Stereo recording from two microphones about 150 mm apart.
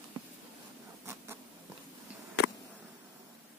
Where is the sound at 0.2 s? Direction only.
30° right (ahead or behind).